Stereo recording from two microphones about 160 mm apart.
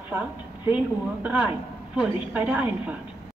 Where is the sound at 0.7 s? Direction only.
10° right (ahead or behind).